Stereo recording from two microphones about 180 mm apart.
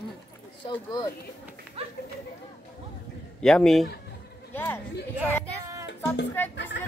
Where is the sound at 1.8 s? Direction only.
30° right (ahead or behind).